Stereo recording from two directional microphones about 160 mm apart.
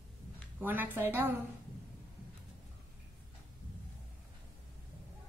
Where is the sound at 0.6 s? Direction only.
10° right (ahead or behind).